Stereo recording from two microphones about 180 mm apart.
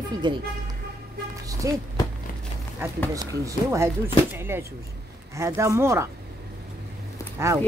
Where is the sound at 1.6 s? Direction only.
15° right (ahead or behind).